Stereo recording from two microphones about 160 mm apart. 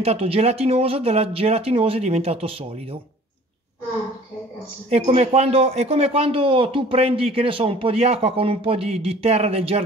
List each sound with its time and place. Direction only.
0.0 s a man's voice: 40° right (ahead or behind)
4.8 s a man's voice: 40° right (ahead or behind)